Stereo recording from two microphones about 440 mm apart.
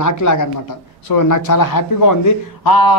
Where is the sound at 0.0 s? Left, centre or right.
Left.